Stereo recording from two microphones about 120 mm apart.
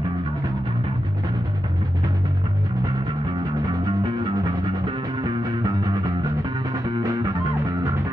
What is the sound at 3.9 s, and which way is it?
Music, 40° right (ahead or behind).